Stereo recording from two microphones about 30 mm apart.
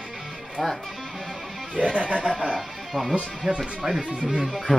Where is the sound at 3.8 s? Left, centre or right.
Right.